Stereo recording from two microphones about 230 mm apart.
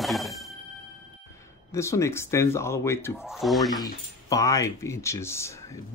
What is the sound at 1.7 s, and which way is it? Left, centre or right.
Speech, centre.